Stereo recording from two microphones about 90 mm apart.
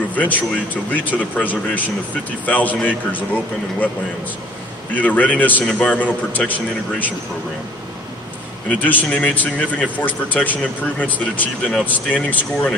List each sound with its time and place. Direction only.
0.1 s a sound: 20° left (ahead or behind)
0.9 s a man's voice: 20° left (ahead or behind)
4.9 s a man's voice: 15° left (ahead or behind)
8.6 s a man's voice: 20° left (ahead or behind)